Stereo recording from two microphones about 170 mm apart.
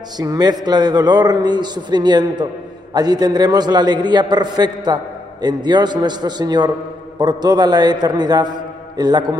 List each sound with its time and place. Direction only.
0.2 s a man's voice: 20° right (ahead or behind)